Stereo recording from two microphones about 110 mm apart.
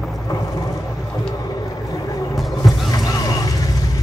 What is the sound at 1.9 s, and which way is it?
Vehicle, 30° left (ahead or behind).